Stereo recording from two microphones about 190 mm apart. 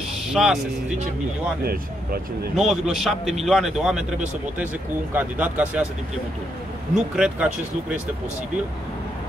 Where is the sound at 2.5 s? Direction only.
Centre (ahead or behind).